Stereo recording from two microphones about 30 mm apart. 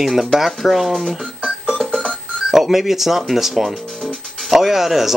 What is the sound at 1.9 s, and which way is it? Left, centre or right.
Music, left.